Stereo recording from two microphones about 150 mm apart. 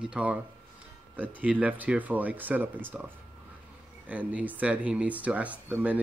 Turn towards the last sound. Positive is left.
turn(degrees=-10)  # may be behind; listen again after turning